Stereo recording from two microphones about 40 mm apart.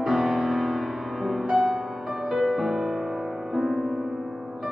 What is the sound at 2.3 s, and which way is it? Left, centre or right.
Music, centre.